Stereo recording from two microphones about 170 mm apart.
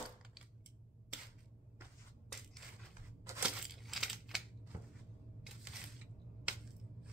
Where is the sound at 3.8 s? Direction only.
Centre (ahead or behind).